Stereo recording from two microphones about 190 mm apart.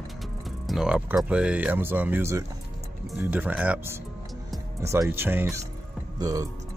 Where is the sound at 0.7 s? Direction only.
5° right (ahead or behind).